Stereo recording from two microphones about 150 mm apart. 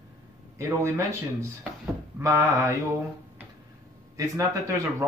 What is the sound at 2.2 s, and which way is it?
Speech, 20° right (ahead or behind).